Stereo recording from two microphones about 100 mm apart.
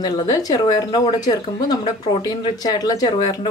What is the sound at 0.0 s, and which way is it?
Speech, 40° left (ahead or behind).